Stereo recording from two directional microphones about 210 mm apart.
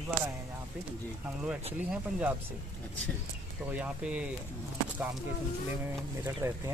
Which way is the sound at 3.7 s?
5° right (ahead or behind).